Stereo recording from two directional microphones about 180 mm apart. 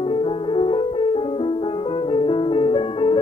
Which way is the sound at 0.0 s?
30° left (ahead or behind).